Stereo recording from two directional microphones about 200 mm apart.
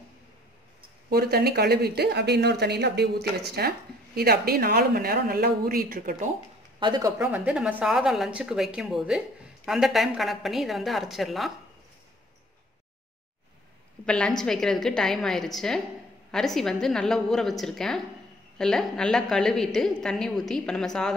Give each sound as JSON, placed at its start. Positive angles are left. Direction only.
{"t": 1.1, "sound": "speech", "side_deg": -50}
{"t": 6.8, "sound": "a woman's voice", "side_deg": -20}
{"t": 14.0, "sound": "a woman's voice", "side_deg": 5}